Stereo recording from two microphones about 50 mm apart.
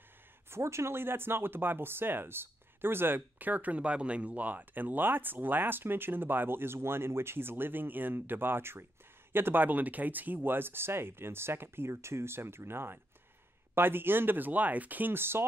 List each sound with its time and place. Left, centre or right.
0.5 s speech: right
3.3 s speech: right